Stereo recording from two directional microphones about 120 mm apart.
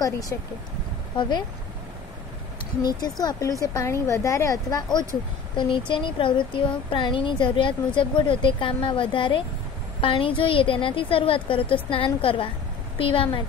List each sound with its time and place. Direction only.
0.0 s a woman's voice: 30° left (ahead or behind)
2.8 s a woman's voice: 35° left (ahead or behind)
5.6 s a woman's voice: 40° left (ahead or behind)